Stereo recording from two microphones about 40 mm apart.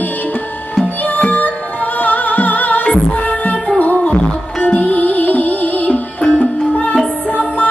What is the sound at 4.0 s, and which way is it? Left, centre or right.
Music, left.